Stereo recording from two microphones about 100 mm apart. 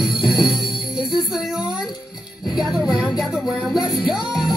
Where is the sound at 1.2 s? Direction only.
5° right (ahead or behind).